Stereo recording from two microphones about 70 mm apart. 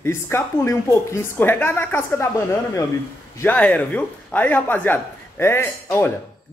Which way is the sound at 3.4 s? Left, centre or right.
Centre.